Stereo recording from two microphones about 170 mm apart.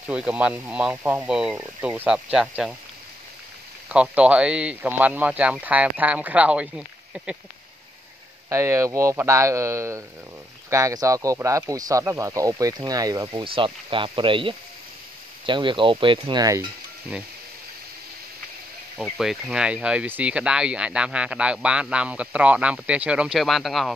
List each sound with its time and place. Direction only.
0.1 s speech: 5° right (ahead or behind)
3.9 s speech: 5° right (ahead or behind)
8.5 s speech: 15° right (ahead or behind)
19.1 s speech: 5° right (ahead or behind)